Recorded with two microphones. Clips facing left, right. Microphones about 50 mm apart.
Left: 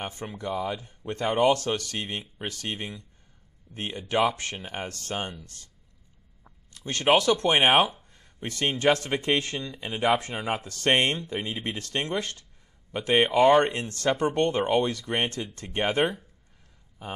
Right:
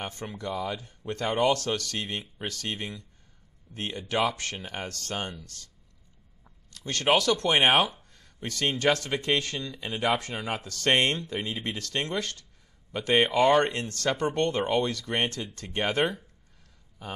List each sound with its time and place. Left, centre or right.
0.0 s speech: centre
13.1 s speech: centre